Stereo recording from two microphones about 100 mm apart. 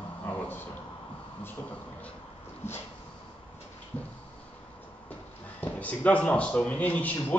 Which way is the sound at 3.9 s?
15° left (ahead or behind).